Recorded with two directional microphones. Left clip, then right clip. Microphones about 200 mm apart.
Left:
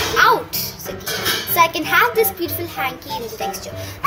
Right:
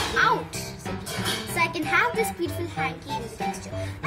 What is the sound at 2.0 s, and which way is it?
Speech, 15° right (ahead or behind).